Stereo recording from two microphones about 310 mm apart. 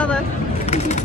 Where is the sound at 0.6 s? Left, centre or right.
Left.